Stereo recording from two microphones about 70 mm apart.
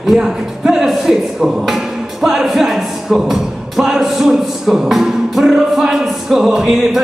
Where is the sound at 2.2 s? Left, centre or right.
Centre.